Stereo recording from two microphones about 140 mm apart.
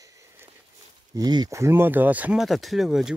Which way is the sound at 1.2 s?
30° right (ahead or behind).